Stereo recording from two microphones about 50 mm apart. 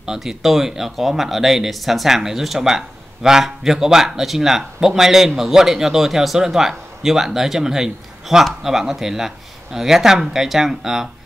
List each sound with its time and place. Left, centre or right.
0.0 s speech: centre